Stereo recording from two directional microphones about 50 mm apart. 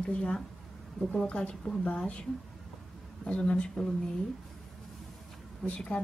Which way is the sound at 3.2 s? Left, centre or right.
Centre.